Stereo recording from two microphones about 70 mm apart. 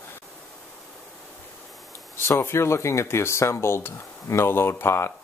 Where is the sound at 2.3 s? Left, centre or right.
Left.